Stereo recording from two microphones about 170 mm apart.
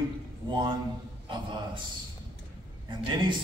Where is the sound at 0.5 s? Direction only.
25° right (ahead or behind).